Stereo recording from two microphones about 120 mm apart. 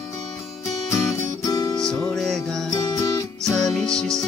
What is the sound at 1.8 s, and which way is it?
Music, 5° left (ahead or behind).